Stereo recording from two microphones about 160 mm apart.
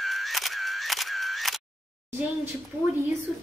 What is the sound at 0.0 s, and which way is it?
Single-lens reflex camera, centre (ahead or behind).